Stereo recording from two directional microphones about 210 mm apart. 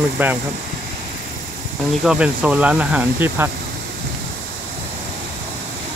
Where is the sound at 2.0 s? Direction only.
5° right (ahead or behind).